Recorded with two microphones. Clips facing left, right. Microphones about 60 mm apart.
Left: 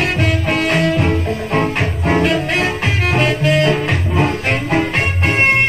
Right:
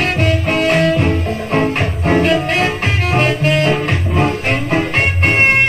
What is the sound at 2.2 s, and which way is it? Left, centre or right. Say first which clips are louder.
Music: right 2 dB; right.